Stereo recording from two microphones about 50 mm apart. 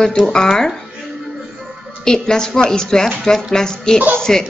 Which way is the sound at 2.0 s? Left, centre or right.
Centre.